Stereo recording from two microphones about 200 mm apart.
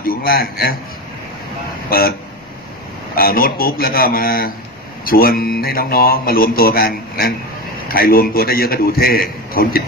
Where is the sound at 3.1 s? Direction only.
50° left (ahead or behind).